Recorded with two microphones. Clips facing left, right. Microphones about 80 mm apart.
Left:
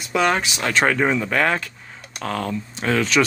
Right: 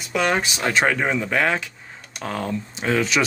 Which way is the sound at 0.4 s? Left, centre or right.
Right.